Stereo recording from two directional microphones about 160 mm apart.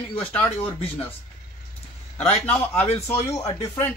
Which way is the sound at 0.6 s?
10° left (ahead or behind).